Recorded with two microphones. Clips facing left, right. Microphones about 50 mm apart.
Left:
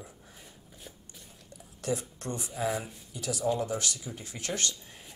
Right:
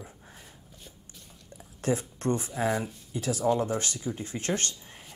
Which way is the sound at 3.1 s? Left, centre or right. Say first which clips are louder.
Right 4 dB; right.